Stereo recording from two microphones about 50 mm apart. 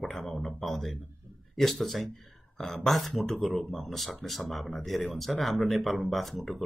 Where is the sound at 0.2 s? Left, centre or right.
Centre.